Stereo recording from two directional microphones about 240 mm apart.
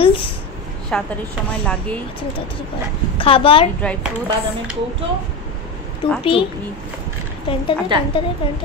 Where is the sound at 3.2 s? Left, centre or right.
Left.